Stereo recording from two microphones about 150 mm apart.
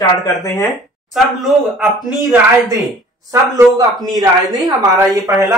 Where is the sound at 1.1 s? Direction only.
Centre (ahead or behind).